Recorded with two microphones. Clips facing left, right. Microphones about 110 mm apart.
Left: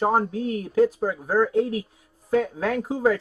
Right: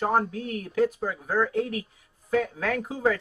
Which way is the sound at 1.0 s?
35° left (ahead or behind).